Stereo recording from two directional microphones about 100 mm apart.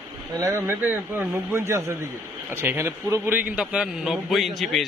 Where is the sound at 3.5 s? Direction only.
10° right (ahead or behind).